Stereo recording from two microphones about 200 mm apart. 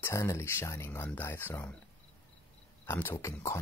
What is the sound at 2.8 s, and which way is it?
Speech, 10° left (ahead or behind).